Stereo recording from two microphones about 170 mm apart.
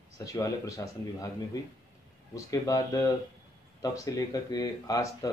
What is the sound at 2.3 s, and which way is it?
Speech, 20° left (ahead or behind).